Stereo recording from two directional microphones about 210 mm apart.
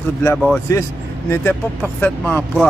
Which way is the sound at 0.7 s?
15° left (ahead or behind).